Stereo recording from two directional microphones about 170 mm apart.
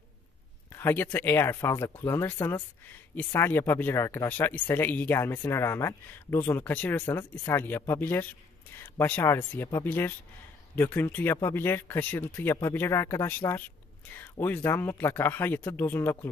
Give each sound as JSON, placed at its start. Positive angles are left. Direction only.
{"t": 0.7, "sound": "speech", "side_deg": 10}